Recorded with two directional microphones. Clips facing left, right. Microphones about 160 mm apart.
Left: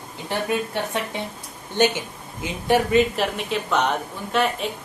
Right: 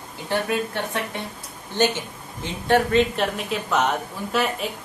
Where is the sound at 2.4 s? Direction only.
10° left (ahead or behind).